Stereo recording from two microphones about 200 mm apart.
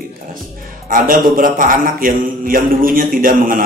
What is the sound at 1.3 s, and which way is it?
Mantra, 45° right (ahead or behind).